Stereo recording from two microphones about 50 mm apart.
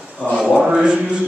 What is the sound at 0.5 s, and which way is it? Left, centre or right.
Chant, centre.